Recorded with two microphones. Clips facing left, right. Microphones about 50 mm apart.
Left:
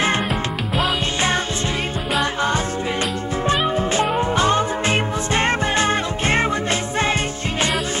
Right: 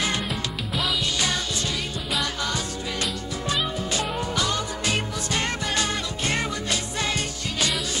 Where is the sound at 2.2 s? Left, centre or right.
Left.